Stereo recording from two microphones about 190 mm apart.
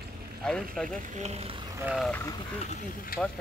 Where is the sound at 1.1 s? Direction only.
35° right (ahead or behind).